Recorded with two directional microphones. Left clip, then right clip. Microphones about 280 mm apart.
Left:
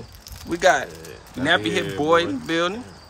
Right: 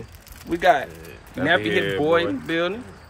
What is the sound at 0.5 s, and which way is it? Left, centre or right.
Speech, centre.